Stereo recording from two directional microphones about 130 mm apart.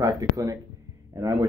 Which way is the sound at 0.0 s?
25° right (ahead or behind).